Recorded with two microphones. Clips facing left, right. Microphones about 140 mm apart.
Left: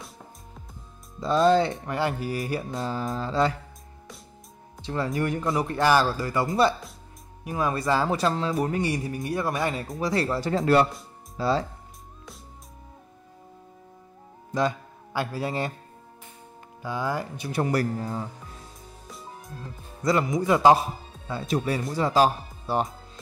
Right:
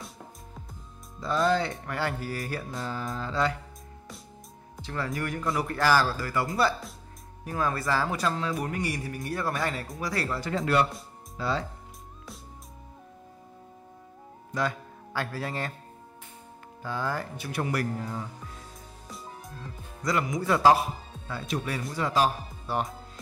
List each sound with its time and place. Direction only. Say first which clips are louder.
1.2 s speech: left 5 dB; 25° left (ahead or behind)
4.8 s speech: left 5 dB; 25° left (ahead or behind)
14.5 s speech: left 4 dB; 20° left (ahead or behind)
16.8 s speech: left 3 dB; 15° left (ahead or behind)
17.5 s speech: left 5 dB; 30° left (ahead or behind)
19.0 s music: even; centre (ahead or behind)
20.0 s speech: left 5 dB; 25° left (ahead or behind)